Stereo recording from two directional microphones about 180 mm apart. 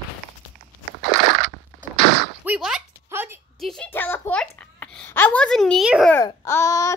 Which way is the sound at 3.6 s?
5° left (ahead or behind).